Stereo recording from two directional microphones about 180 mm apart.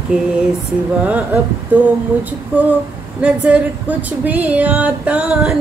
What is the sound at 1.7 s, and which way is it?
Speech, 10° right (ahead or behind).